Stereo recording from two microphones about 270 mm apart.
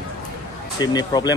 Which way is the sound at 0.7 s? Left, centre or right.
Centre.